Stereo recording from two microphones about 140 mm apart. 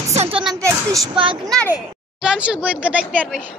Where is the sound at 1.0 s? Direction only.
35° right (ahead or behind).